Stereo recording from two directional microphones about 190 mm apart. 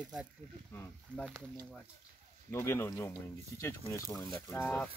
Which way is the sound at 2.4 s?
15° left (ahead or behind).